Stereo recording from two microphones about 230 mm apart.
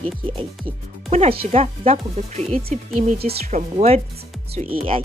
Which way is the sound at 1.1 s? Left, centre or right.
Right.